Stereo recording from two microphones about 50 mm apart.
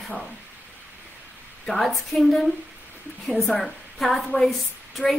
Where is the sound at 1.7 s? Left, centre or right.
Centre.